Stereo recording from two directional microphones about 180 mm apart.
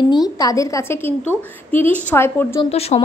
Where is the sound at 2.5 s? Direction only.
35° left (ahead or behind).